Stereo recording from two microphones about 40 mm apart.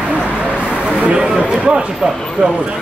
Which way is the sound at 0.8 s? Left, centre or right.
Right.